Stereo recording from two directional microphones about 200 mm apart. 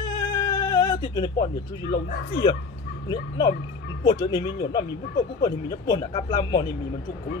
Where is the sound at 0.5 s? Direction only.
20° left (ahead or behind).